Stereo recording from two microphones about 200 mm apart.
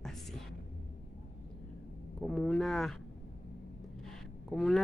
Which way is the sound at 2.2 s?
Centre (ahead or behind).